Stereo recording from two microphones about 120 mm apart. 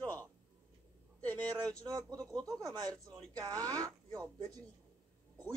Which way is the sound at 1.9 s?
35° right (ahead or behind).